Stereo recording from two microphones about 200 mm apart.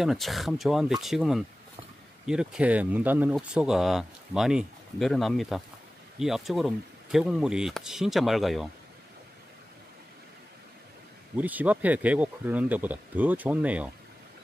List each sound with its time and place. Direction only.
0.0 s speech: centre (ahead or behind)
11.3 s speech: 10° right (ahead or behind)